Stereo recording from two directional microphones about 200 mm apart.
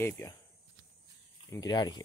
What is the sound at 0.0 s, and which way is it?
Speech, 15° left (ahead or behind).